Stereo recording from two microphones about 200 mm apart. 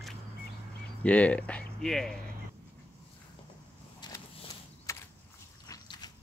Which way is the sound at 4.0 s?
20° left (ahead or behind).